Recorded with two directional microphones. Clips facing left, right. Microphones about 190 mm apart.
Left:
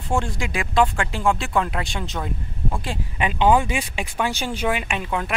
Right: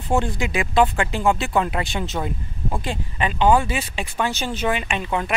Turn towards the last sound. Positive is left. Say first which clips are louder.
# right 2 dB
turn(degrees=0)  # may be behind; listen again after turning